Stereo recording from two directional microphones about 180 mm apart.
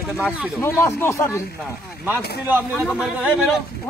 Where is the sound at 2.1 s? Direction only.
10° right (ahead or behind).